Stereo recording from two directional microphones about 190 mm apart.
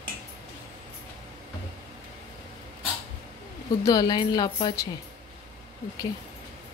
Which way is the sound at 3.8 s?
20° left (ahead or behind).